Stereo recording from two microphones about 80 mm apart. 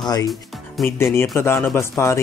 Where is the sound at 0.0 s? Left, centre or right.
Left.